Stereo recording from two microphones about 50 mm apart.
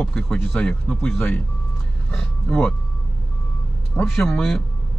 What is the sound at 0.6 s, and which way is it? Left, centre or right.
Speech, centre.